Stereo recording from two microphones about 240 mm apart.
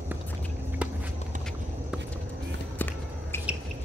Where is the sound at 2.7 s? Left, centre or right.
Centre.